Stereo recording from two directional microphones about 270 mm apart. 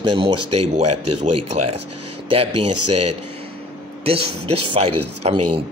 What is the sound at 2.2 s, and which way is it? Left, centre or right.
Speech, right.